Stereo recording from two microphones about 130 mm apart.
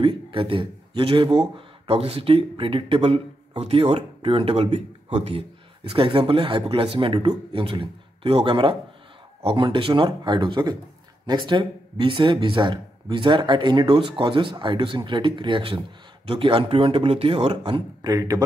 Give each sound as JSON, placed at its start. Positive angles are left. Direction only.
{"t": 0.0, "sound": "speech", "side_deg": -45}
{"t": 18.0, "sound": "a man's voice", "side_deg": -30}